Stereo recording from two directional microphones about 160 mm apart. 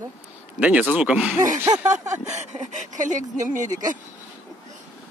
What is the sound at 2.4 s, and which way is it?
Speech, 50° right (ahead or behind).